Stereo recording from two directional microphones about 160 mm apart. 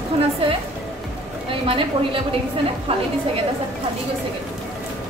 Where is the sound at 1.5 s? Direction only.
35° right (ahead or behind).